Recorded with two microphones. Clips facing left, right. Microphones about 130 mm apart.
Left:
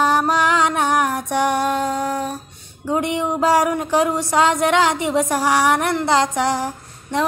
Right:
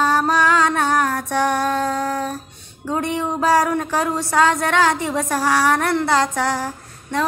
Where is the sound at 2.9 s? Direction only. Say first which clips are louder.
Left 2 dB; 15° left (ahead or behind).